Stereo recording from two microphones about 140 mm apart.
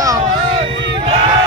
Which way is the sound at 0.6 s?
40° right (ahead or behind).